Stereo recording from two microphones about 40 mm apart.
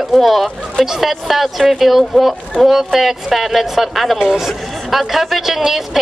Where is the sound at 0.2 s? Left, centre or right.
Centre.